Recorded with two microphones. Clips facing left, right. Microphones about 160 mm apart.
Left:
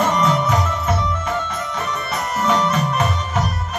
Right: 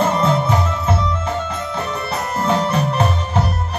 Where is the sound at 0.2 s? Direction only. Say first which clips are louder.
Right 1 dB; 30° right (ahead or behind).